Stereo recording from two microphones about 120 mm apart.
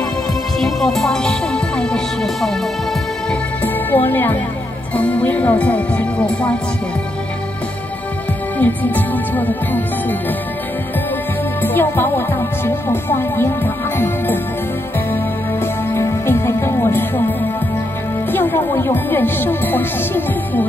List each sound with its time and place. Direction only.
0.6 s speech: 5° left (ahead or behind)
3.3 s speech: 15° left (ahead or behind)
8.5 s speech: 15° left (ahead or behind)
11.6 s speech: 15° left (ahead or behind)
15.6 s music: 20° left (ahead or behind)
18.3 s speech: 15° left (ahead or behind)